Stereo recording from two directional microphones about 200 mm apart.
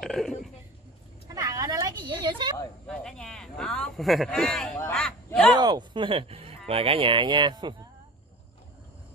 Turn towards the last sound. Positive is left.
turn(degrees=-20)  # may be behind; listen again after turning